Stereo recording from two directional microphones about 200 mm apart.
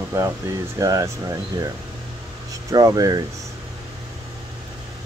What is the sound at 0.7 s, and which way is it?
Speech, 15° right (ahead or behind).